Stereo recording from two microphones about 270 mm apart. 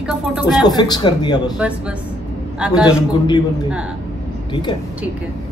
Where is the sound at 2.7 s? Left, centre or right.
Centre.